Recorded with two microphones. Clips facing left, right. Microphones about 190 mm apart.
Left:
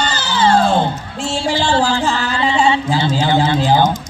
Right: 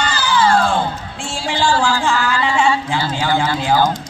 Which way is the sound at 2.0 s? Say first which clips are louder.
Even; 35° left (ahead or behind).